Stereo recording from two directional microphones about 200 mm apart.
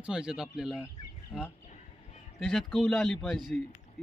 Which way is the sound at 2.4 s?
5° left (ahead or behind).